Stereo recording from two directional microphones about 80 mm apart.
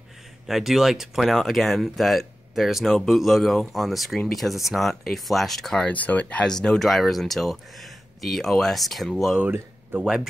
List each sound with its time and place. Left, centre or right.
0.5 s speech: centre
5.9 s speech: centre
9.4 s speech: right